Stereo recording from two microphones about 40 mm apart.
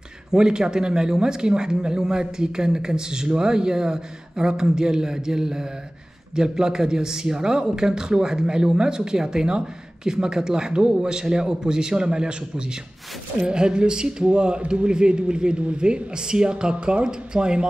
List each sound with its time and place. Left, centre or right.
0.3 s speech: centre